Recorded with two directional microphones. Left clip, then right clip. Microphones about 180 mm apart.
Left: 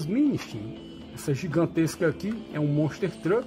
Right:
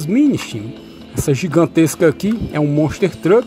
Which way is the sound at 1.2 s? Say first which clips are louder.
Right 12 dB; 30° right (ahead or behind).